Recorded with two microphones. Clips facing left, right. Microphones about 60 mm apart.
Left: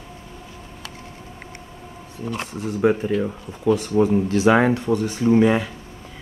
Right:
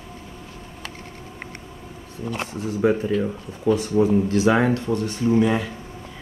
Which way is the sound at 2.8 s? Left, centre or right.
Left.